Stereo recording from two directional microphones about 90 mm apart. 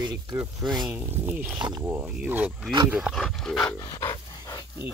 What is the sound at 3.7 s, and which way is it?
Dog, 40° left (ahead or behind).